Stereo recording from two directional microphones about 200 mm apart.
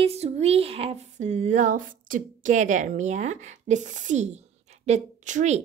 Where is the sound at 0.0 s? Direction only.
30° right (ahead or behind).